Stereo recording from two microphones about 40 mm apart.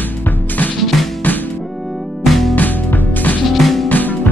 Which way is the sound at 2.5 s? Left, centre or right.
Left.